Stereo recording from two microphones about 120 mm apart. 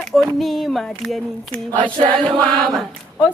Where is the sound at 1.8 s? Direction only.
45° right (ahead or behind).